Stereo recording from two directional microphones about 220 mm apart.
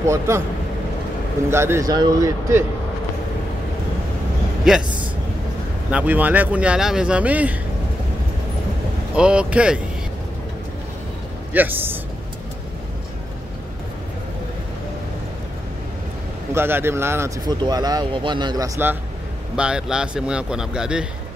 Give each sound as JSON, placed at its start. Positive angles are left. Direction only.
{"t": 0.0, "sound": "speech", "side_deg": -15}
{"t": 1.5, "sound": "speech", "side_deg": -10}
{"t": 4.7, "sound": "speech", "side_deg": -5}
{"t": 5.9, "sound": "speech", "side_deg": -5}
{"t": 9.1, "sound": "speech", "side_deg": -5}
{"t": 11.5, "sound": "speech", "side_deg": -10}
{"t": 16.5, "sound": "speech", "side_deg": -10}